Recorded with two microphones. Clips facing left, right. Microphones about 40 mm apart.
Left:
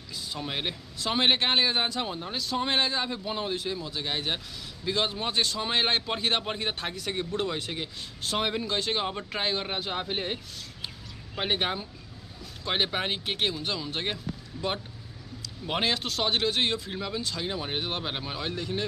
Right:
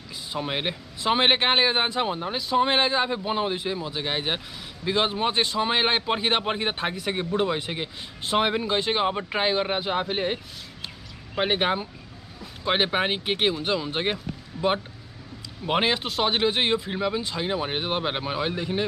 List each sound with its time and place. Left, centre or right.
0.3 s a man's voice: right